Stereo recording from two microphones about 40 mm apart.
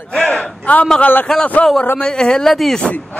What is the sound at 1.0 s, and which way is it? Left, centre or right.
Speech, left.